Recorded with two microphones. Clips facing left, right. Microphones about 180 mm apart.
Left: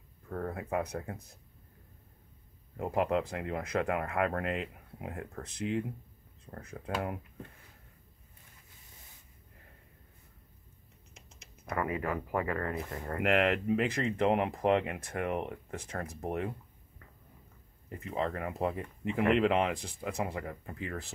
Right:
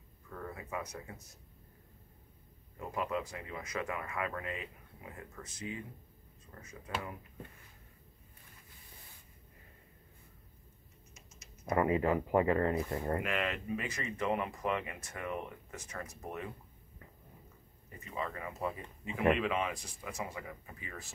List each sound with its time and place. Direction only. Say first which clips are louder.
0.3 s speech: left 8 dB; 50° left (ahead or behind)
2.8 s speech: left 7 dB; 60° left (ahead or behind)
11.7 s speech: right 4 dB; 25° right (ahead or behind)
13.2 s speech: left 8 dB; 65° left (ahead or behind)
17.9 s speech: left 6 dB; 65° left (ahead or behind)